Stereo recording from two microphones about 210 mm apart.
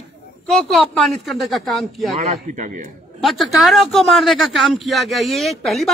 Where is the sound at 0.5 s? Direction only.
Centre (ahead or behind).